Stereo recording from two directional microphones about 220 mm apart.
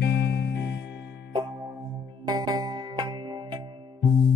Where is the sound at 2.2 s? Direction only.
20° right (ahead or behind).